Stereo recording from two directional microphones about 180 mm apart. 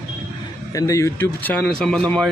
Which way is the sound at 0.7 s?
15° left (ahead or behind).